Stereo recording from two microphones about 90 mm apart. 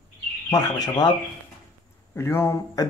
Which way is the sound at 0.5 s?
45° left (ahead or behind).